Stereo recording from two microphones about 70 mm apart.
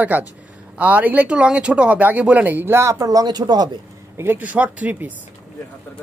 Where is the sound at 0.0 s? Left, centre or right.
Right.